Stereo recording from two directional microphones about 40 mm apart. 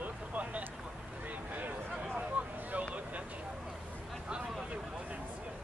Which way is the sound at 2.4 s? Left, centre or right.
Right.